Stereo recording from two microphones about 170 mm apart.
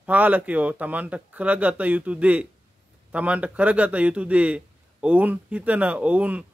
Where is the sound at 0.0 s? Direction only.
10° right (ahead or behind).